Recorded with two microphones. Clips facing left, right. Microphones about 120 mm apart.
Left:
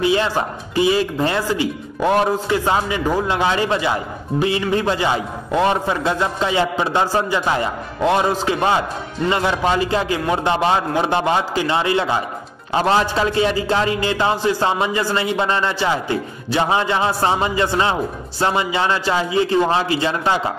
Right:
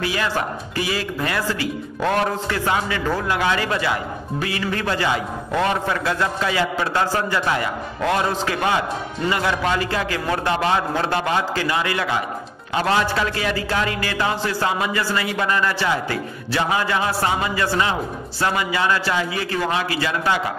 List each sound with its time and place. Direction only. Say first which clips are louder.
0.0 s speech: left 5 dB; 25° left (ahead or behind)